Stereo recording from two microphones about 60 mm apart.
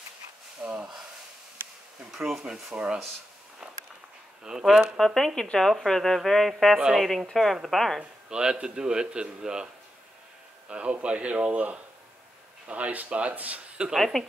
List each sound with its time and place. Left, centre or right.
0.6 s a man's voice: right
2.0 s speech: centre
3.6 s walk: centre
4.4 s speech: centre
4.9 s speech: centre
8.0 s speech: centre
10.7 s a man's voice: right
13.9 s speech: centre